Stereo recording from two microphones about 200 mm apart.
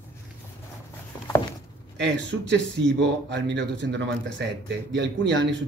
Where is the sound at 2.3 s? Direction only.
60° right (ahead or behind).